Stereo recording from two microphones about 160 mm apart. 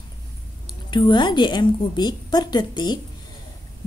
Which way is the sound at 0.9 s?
30° left (ahead or behind).